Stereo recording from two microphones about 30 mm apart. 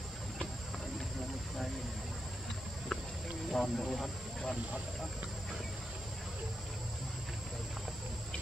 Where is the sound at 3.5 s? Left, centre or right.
Centre.